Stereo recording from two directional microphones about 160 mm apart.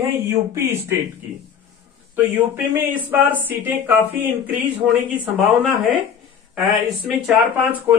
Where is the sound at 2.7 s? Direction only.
10° right (ahead or behind).